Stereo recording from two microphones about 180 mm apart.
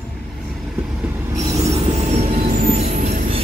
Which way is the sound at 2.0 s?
45° right (ahead or behind).